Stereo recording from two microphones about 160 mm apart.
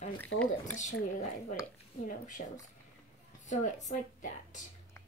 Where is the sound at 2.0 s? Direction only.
55° left (ahead or behind).